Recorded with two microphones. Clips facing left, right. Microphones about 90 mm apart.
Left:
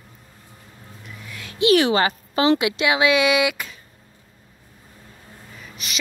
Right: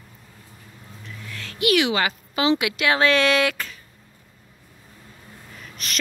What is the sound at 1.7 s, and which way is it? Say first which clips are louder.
Speech: left 4 dB; 35° left (ahead or behind).